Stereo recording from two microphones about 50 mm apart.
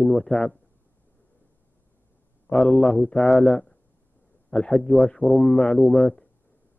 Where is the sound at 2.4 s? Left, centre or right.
Centre.